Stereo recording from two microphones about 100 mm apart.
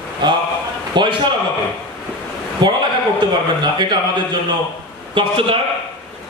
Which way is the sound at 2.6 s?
50° right (ahead or behind).